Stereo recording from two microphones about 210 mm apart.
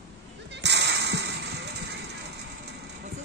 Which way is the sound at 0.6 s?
55° right (ahead or behind).